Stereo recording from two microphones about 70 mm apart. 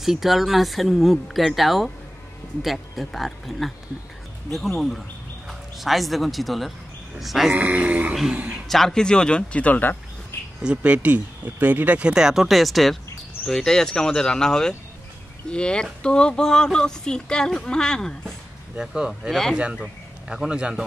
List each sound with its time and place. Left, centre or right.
0.0 s speech: centre
7.5 s speech: right
8.1 s speech: centre; by 9.9 s left
10.6 s speech: centre
18.8 s speech: centre